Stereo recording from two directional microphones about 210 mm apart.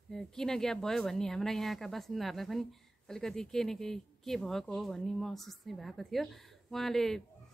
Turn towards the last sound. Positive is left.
turn(degrees=0)  # may be behind; listen again after turning